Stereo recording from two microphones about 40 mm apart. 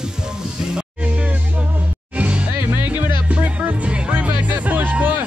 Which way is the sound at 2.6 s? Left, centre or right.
Right.